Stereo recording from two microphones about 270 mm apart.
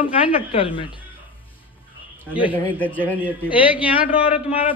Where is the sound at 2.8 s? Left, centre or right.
Centre.